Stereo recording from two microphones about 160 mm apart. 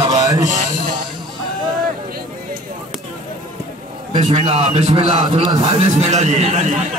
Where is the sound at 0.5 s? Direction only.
50° right (ahead or behind).